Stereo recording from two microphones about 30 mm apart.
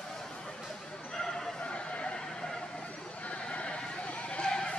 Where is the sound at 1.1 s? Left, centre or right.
Centre.